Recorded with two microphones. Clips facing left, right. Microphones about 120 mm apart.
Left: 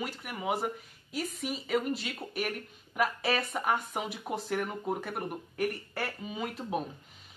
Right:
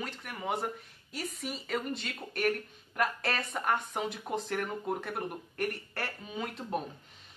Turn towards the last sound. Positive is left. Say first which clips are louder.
# left 1 dB
turn(degrees=5)  # may be behind; listen again after turning